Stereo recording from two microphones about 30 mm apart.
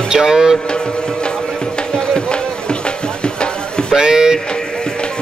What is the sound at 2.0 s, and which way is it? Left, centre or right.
Music, left.